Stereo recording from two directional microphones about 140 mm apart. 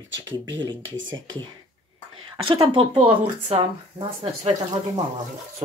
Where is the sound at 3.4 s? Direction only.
45° right (ahead or behind).